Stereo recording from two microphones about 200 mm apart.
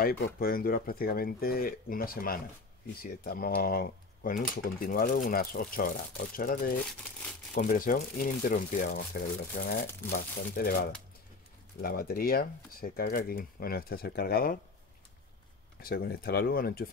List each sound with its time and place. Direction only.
0.0 s speech: 50° left (ahead or behind)
15.8 s speech: 50° left (ahead or behind)